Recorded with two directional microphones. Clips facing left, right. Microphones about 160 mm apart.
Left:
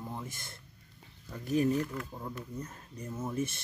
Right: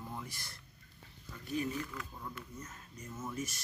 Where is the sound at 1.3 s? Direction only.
45° left (ahead or behind).